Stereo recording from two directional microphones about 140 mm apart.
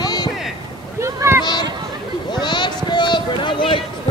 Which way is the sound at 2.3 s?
35° left (ahead or behind).